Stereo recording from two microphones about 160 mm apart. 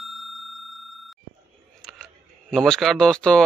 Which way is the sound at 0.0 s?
Centre (ahead or behind).